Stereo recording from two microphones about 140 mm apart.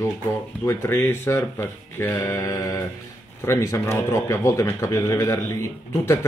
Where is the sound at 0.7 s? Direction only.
15° left (ahead or behind).